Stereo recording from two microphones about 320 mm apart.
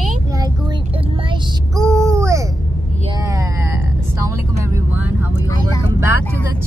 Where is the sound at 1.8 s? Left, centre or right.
Centre.